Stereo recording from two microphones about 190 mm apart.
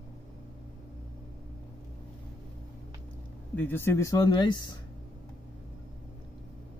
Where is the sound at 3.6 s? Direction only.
10° left (ahead or behind).